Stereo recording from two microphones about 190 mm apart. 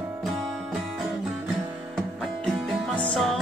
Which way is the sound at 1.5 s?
Centre (ahead or behind).